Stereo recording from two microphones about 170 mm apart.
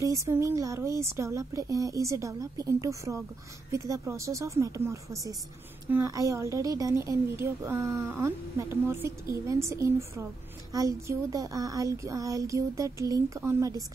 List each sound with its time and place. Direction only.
0.0 s a woman's voice: 20° right (ahead or behind)